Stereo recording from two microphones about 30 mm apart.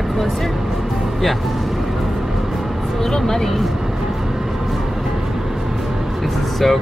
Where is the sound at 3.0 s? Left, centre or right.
Centre.